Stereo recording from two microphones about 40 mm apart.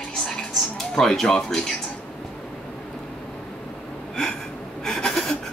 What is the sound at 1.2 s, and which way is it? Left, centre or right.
Speech, centre.